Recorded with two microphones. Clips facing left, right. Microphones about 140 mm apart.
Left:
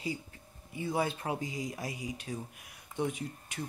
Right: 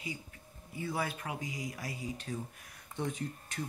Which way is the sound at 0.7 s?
25° left (ahead or behind).